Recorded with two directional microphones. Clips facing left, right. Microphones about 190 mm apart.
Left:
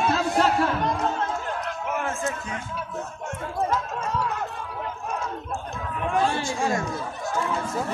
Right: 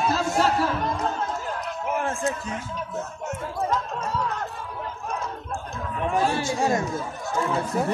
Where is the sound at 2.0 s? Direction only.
35° right (ahead or behind).